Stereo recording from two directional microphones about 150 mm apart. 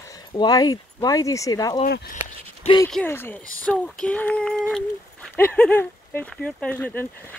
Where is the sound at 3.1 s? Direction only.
15° left (ahead or behind).